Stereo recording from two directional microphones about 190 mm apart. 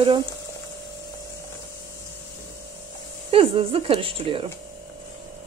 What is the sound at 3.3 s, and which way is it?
A woman's voice, 30° right (ahead or behind).